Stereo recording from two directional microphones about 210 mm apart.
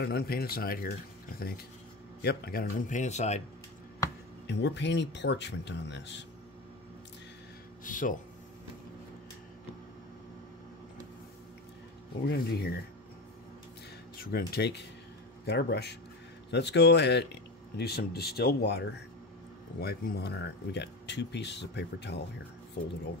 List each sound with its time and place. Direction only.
0.0 s speech: 45° left (ahead or behind); by 3.4 s 30° left (ahead or behind)
4.5 s speech: 55° left (ahead or behind)
7.8 s speech: 40° left (ahead or behind)
12.3 s speech: 50° left (ahead or behind)
14.2 s speech: 45° left (ahead or behind)